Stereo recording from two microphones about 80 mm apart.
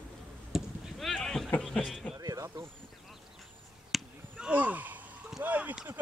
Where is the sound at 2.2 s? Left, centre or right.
Right.